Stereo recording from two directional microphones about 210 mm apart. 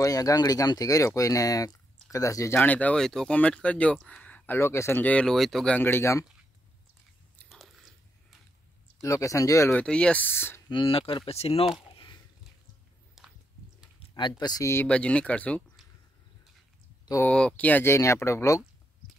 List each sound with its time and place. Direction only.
0.0 s speech: 15° left (ahead or behind)
7.4 s biting: centre (ahead or behind)
9.0 s speech: 15° left (ahead or behind)
10.7 s speech: 25° left (ahead or behind)
11.9 s a sound: 20° left (ahead or behind)
13.2 s a sound: centre (ahead or behind)
13.9 s a sound: 20° left (ahead or behind)
14.4 s speech: 15° left (ahead or behind)
17.0 s speech: 10° left (ahead or behind)